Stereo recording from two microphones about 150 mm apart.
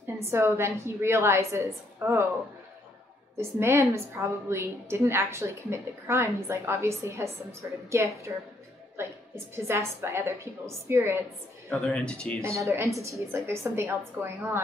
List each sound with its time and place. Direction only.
0.2 s a woman's voice: 15° right (ahead or behind)
3.3 s a woman's voice: 15° right (ahead or behind)
11.7 s speech: 5° left (ahead or behind)
12.4 s a woman's voice: 20° right (ahead or behind)